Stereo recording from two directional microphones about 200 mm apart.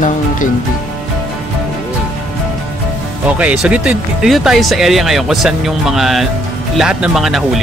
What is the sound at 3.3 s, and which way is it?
Speech, 5° right (ahead or behind).